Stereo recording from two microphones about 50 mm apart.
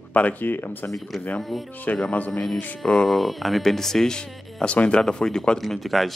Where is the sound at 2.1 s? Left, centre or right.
Left.